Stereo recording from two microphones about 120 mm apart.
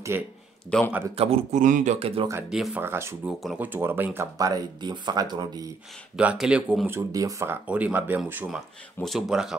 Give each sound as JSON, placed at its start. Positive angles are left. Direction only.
{"t": 0.1, "sound": "speech", "side_deg": -15}
{"t": 0.7, "sound": "a man's voice", "side_deg": 10}
{"t": 1.1, "sound": "speech", "side_deg": -55}
{"t": 2.0, "sound": "speech", "side_deg": -55}
{"t": 2.5, "sound": "speech", "side_deg": -5}
{"t": 2.8, "sound": "speech", "side_deg": -20}
{"t": 3.3, "sound": "speech", "side_deg": -10}
{"t": 4.4, "sound": "speech", "side_deg": -30}
{"t": 6.1, "sound": "speech", "side_deg": -5}
{"t": 6.9, "sound": "speech", "side_deg": -25}
{"t": 7.6, "sound": "speech", "side_deg": -10}
{"t": 8.5, "sound": "speech", "side_deg": 0}